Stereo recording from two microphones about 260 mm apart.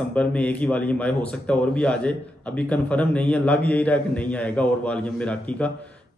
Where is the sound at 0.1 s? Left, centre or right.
Centre.